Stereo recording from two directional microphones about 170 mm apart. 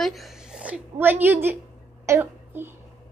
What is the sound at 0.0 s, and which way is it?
A woman's voice, centre (ahead or behind).